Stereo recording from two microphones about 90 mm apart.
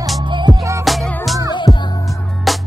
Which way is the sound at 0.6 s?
35° right (ahead or behind).